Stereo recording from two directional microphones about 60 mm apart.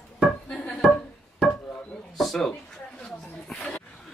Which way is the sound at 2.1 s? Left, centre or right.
Centre.